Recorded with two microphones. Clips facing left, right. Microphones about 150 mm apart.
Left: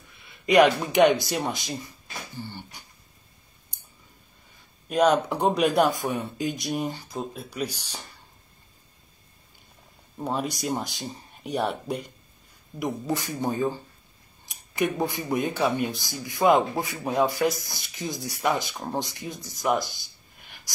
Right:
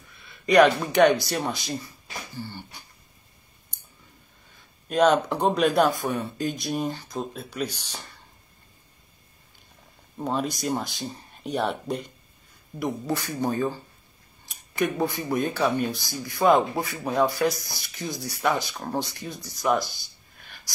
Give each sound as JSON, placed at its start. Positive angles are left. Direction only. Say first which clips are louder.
{"t": 0.2, "sound": "speech", "louder": "right 1 dB", "side_deg": 15}
{"t": 4.8, "sound": "speech", "louder": "right 1 dB", "side_deg": 5}
{"t": 10.1, "sound": "speech", "louder": "right 1 dB", "side_deg": 5}
{"t": 12.7, "sound": "speech", "louder": "even", "side_deg": 15}
{"t": 14.5, "sound": "a sound", "louder": "even", "side_deg": 15}
{"t": 15.3, "sound": "speech", "louder": "even", "side_deg": 15}
{"t": 19.5, "sound": "a sound", "louder": "right 1 dB", "side_deg": 15}